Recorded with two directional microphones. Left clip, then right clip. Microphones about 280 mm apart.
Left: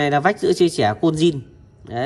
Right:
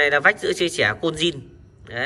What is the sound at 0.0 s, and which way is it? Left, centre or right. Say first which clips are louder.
Speech: even; left.